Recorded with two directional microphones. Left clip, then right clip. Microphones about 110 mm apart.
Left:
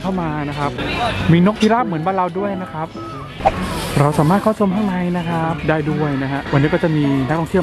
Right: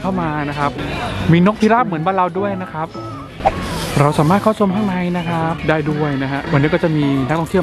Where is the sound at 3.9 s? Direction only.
15° right (ahead or behind).